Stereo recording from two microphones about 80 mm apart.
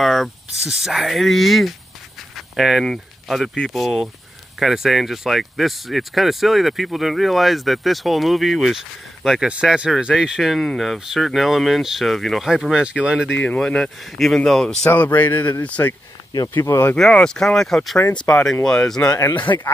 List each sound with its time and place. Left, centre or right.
0.0 s a sound: centre
0.8 s speech: centre
2.3 s a sound: centre
2.9 s speech: centre
9.5 s speech: centre
13.4 s speech: centre
14.1 s speech: centre
14.9 s a man's voice: left
16.6 s speech: left
16.9 s speech: centre
19.5 s speech: left